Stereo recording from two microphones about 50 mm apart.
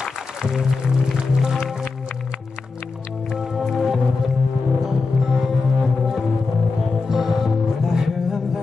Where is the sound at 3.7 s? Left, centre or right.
Centre.